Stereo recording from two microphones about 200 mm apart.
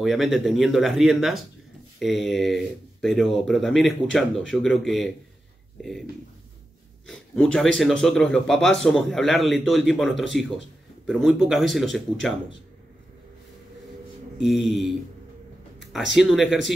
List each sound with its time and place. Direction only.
0.0 s speech: centre (ahead or behind)
7.1 s speech: centre (ahead or behind)
14.4 s speech: centre (ahead or behind)
15.8 s a sound: centre (ahead or behind)
16.2 s speech: centre (ahead or behind)